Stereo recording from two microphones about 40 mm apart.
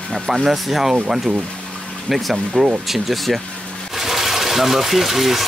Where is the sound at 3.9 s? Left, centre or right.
Centre.